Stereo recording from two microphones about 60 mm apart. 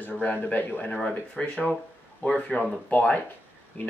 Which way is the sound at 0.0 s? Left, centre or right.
Left.